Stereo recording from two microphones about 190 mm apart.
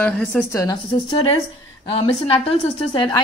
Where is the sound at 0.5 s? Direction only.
20° left (ahead or behind).